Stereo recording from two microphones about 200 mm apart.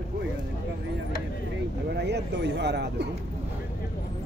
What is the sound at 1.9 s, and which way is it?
Speech, 55° right (ahead or behind).